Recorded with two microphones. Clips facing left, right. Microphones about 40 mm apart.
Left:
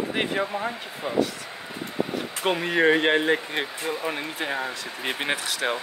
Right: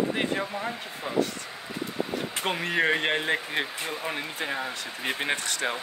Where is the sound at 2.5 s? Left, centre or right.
Centre.